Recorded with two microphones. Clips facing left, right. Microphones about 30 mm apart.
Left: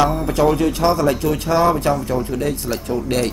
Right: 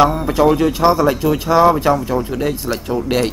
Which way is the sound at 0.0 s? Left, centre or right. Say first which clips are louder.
Right 3 dB; centre.